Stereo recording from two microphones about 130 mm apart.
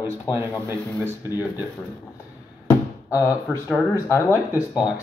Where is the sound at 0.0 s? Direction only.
20° right (ahead or behind).